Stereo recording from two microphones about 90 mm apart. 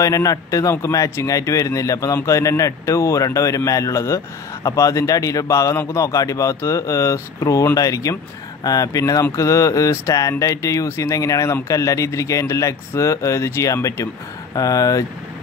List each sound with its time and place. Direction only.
0.0 s speech: 40° left (ahead or behind)